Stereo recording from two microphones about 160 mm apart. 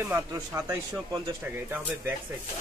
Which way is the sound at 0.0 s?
15° right (ahead or behind).